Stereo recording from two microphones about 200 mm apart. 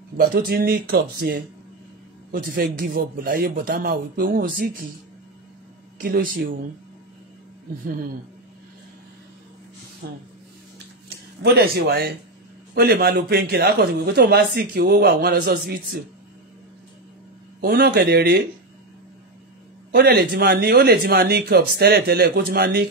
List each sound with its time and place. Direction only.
0.2 s speech: 50° right (ahead or behind)
5.9 s speech: 45° right (ahead or behind)
10.0 s speech: 50° right (ahead or behind)
17.6 s speech: 50° right (ahead or behind)
19.9 s speech: 55° right (ahead or behind)